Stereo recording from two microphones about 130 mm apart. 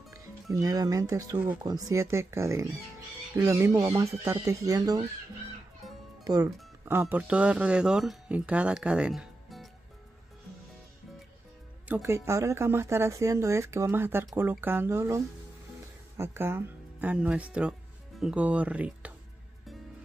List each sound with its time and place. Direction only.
0.1 s speech: 25° right (ahead or behind)
6.2 s speech: 25° right (ahead or behind); by 9.7 s centre (ahead or behind)
12.0 s speech: 20° right (ahead or behind)